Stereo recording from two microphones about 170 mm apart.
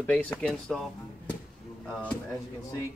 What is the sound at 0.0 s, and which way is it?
Speech, 10° left (ahead or behind).